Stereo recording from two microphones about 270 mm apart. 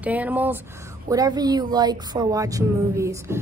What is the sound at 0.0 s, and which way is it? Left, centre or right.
A woman's voice, centre.